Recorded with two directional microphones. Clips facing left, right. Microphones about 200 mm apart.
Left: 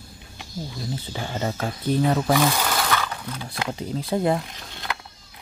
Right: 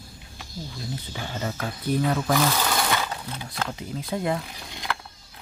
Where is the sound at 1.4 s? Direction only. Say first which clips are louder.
Left 3 dB; 25° left (ahead or behind).